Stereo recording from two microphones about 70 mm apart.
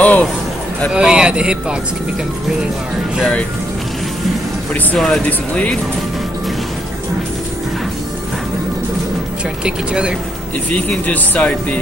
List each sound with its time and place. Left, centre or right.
0.0 s a sound: left
0.9 s speech: centre
4.9 s speech: centre
5.2 s speech: centre
9.7 s speech: centre
10.7 s speech: centre